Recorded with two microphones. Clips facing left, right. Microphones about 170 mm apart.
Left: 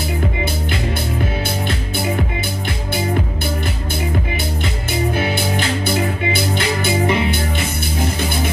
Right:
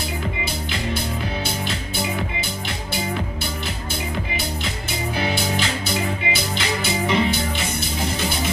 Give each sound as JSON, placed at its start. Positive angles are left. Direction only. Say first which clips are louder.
{"t": 5.1, "sound": "music", "louder": "left 3 dB", "side_deg": 55}